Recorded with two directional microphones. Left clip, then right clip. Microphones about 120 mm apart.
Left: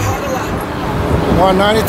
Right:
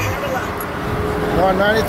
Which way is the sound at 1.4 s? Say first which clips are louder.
Left 3 dB; 10° left (ahead or behind).